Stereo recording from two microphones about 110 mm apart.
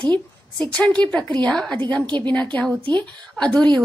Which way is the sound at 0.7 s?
10° left (ahead or behind).